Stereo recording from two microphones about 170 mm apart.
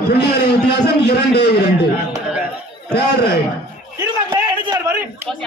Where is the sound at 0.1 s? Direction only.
80° left.